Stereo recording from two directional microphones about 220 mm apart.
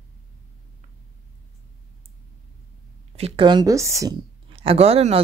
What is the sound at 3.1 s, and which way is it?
Speech, 25° right (ahead or behind).